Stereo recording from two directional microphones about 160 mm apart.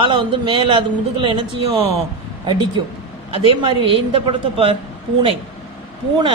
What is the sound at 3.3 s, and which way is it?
Speech, 35° right (ahead or behind).